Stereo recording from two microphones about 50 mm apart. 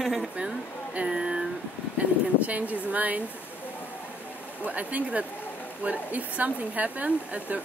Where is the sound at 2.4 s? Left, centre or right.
Right.